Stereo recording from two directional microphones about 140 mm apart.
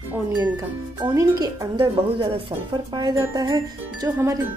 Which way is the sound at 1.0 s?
25° right (ahead or behind).